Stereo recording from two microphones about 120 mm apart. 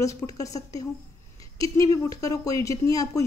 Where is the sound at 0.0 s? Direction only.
30° left (ahead or behind).